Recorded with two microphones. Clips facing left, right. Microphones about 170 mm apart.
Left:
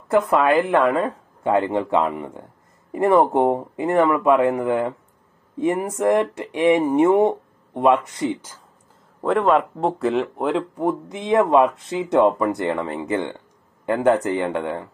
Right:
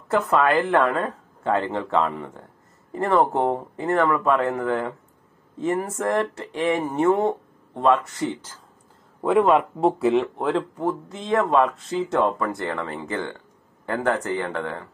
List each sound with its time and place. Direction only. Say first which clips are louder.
0.1 s speech: left 3 dB; 10° left (ahead or behind)
8.2 s speech: left 3 dB; 5° left (ahead or behind)
9.2 s speech: even; 5° right (ahead or behind); by 14.9 s 20° left (ahead or behind)